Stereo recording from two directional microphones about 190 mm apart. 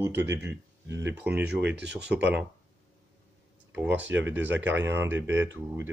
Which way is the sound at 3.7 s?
10° right (ahead or behind).